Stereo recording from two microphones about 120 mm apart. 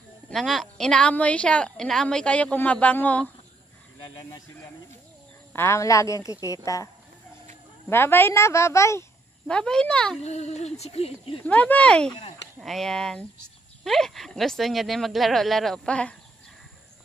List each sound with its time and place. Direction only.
0.3 s a woman's voice: centre (ahead or behind)
4.1 s speech: 35° left (ahead or behind)
5.5 s speech: 20° left (ahead or behind)
7.9 s speech: 20° left (ahead or behind)
9.5 s a woman's voice: 5° left (ahead or behind)
10.2 s a sound: 65° left (ahead or behind)
11.4 s a woman's voice: 10° left (ahead or behind)